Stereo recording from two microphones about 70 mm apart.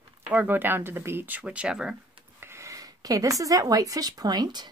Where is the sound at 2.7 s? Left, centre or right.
Right.